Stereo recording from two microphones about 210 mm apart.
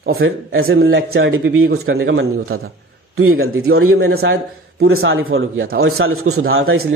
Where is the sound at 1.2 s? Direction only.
65° right (ahead or behind).